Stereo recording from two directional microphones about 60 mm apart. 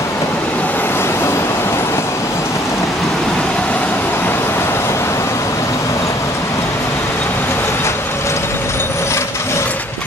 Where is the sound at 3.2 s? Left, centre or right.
Centre; by 6.1 s left.